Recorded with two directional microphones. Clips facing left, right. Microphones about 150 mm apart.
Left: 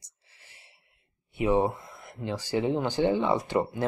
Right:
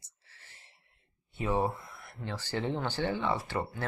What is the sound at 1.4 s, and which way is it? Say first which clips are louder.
Speech: left 6 dB; 20° left (ahead or behind).